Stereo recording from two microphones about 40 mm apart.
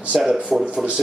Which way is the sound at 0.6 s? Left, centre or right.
Right.